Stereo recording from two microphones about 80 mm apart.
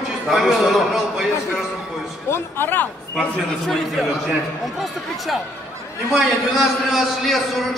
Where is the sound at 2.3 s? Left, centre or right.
Left.